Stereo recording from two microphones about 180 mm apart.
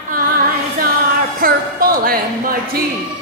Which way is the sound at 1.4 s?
55° right (ahead or behind).